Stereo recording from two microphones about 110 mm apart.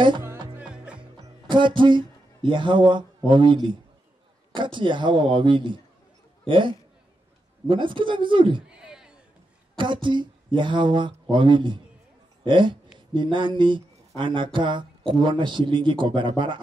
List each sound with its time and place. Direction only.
0.6 s music: 10° right (ahead or behind)
1.8 s speech: 45° right (ahead or behind)
8.6 s a sound: 10° right (ahead or behind)
10.0 s speech: 45° right (ahead or behind)